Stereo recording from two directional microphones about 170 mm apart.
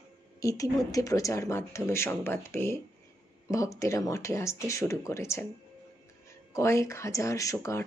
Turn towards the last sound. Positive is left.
turn(degrees=15)  # may be behind; listen again after turning